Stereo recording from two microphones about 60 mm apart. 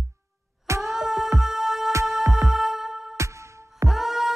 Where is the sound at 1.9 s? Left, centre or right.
Right.